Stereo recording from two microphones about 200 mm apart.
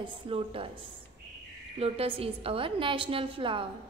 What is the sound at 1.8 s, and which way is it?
A woman's voice, 30° right (ahead or behind).